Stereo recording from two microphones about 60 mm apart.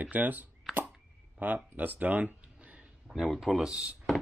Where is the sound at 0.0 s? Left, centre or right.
Right.